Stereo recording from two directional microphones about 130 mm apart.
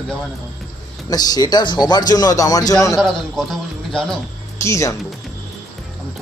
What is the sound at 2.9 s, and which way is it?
A man's voice, centre (ahead or behind).